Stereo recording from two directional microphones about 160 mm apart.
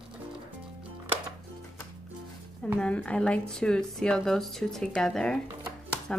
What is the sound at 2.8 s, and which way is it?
A woman's voice, 10° left (ahead or behind).